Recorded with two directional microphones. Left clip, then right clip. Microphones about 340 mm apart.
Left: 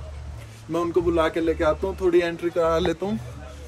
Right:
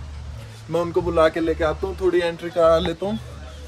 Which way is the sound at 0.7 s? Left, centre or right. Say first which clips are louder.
Right 1 dB; centre.